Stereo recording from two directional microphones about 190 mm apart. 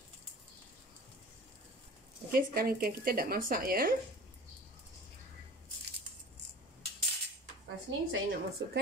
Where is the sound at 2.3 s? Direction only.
50° right (ahead or behind).